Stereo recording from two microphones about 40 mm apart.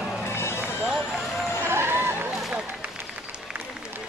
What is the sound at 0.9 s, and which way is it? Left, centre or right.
Run, centre.